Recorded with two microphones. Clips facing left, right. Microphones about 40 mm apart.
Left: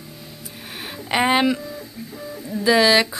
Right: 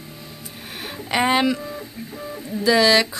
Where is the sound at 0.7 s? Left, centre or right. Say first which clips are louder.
Even; centre.